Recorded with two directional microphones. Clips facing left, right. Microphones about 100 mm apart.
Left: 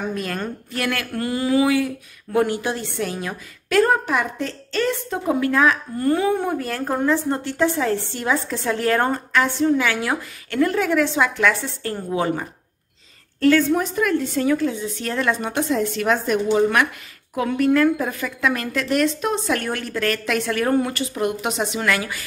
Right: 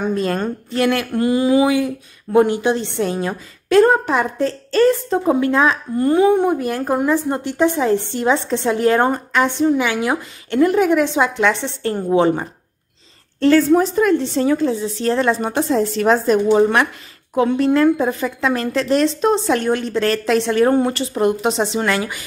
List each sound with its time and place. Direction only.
0.1 s a woman's voice: 30° right (ahead or behind)
17.4 s a woman's voice: 25° right (ahead or behind)